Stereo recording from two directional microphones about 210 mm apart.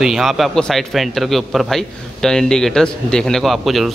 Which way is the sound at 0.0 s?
Centre (ahead or behind).